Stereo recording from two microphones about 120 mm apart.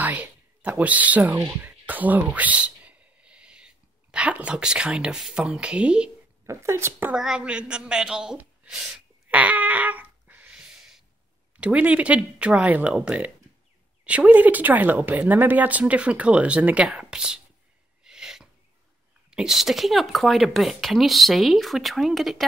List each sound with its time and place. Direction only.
0.0 s speech: 15° right (ahead or behind)
6.4 s speech: 25° right (ahead or behind)
7.2 s a sound: 5° right (ahead or behind)
11.6 s speech: 10° right (ahead or behind)
18.0 s sneeze: 5° right (ahead or behind)
19.3 s speech: 5° right (ahead or behind)